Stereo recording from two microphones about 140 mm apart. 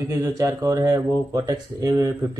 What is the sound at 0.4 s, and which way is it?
A man's voice, 20° right (ahead or behind).